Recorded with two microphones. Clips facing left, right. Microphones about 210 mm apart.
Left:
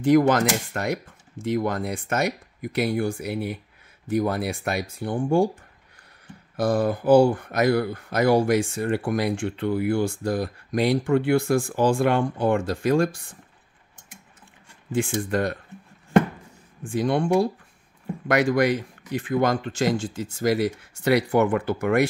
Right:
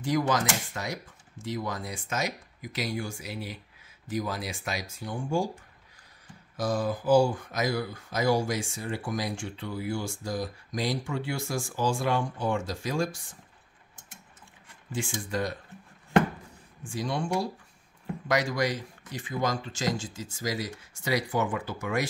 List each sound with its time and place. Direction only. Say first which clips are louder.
0.0 s speech: left 9 dB; 55° left (ahead or behind)
6.5 s speech: left 6 dB; 60° left (ahead or behind)
15.2 s speech: left 6 dB; 60° left (ahead or behind)
16.8 s speech: left 9 dB; 55° left (ahead or behind)